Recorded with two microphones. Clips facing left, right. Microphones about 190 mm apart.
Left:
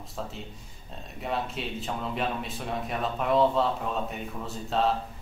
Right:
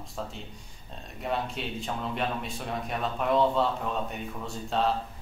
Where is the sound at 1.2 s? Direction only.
Centre (ahead or behind).